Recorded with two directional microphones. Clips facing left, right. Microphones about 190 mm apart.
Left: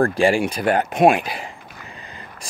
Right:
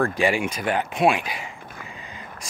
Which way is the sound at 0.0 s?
30° left (ahead or behind).